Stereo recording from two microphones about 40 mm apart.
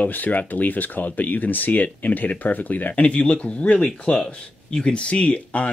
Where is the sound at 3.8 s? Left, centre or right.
Centre.